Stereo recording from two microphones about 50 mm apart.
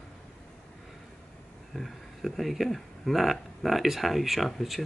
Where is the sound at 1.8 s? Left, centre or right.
Centre.